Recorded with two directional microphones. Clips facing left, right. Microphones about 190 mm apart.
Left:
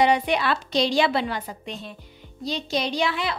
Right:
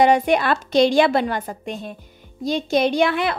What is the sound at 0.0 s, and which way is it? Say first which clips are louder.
Speech: right 5 dB; 50° right (ahead or behind).